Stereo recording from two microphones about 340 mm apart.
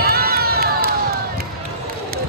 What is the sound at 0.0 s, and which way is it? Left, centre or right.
Run, right.